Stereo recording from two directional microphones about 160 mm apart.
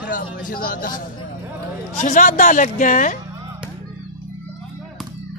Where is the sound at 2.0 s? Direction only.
55° left (ahead or behind).